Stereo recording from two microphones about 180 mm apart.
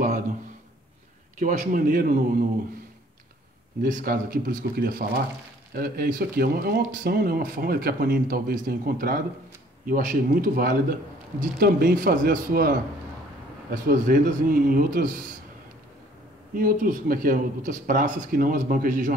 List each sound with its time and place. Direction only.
1.4 s a man's voice: 45° right (ahead or behind)
3.8 s a man's voice: 55° right (ahead or behind)
16.5 s a man's voice: 50° right (ahead or behind)